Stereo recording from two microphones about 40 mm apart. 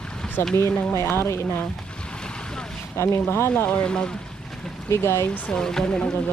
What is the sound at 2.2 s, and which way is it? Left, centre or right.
Boat, centre.